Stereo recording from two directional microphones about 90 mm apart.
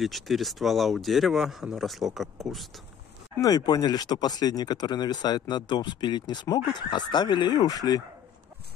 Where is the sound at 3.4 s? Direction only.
45° left (ahead or behind).